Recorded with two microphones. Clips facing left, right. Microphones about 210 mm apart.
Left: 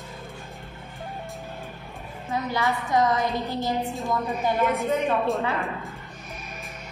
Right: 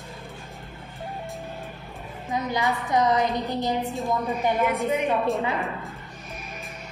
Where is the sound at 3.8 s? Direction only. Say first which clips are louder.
Right 1 dB; centre (ahead or behind).